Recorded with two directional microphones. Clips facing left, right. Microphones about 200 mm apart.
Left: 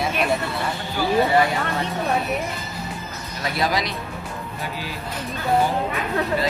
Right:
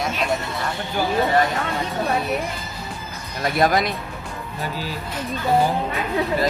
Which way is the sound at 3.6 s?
50° right (ahead or behind).